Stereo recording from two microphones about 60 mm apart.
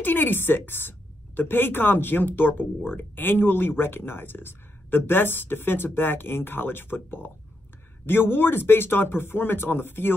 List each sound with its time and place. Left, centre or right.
0.0 s a woman's voice: left